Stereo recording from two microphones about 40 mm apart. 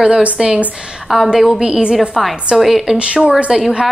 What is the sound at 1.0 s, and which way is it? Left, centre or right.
Speech, centre.